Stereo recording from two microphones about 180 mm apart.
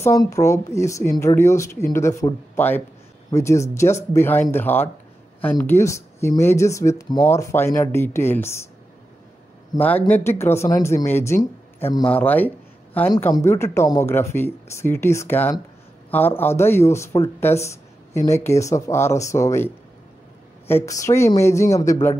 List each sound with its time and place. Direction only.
0.0 s speech: 15° left (ahead or behind)
9.8 s speech: 10° left (ahead or behind)